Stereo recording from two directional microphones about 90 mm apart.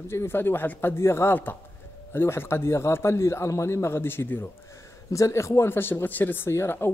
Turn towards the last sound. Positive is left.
turn(degrees=25)  # may be behind; listen again after turning